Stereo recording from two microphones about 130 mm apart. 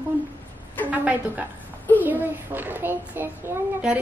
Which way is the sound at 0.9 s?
10° right (ahead or behind).